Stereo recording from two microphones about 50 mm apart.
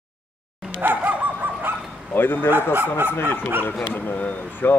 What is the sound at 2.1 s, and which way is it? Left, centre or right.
Speech, left.